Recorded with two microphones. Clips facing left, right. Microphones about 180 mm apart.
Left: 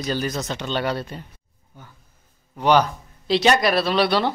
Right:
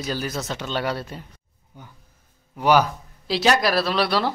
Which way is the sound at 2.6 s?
5° right (ahead or behind).